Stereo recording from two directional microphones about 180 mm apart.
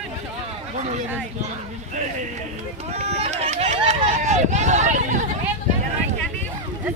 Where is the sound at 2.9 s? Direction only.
35° right (ahead or behind).